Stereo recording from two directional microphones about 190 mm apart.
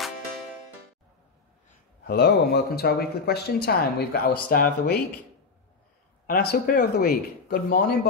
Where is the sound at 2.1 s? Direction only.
55° left (ahead or behind).